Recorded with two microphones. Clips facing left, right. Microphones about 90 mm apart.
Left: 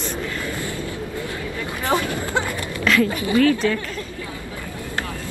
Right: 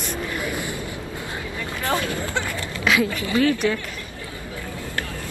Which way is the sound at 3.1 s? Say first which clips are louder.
Left 4 dB; 25° left (ahead or behind).